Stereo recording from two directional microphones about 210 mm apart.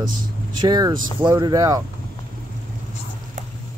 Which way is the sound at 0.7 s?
20° right (ahead or behind).